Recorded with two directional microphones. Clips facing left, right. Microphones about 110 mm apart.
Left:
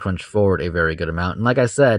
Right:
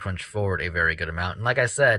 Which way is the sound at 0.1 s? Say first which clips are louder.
Left 10 dB; 35° left (ahead or behind).